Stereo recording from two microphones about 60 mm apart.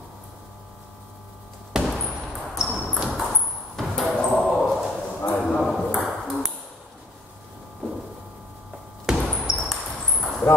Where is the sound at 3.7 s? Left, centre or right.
Centre.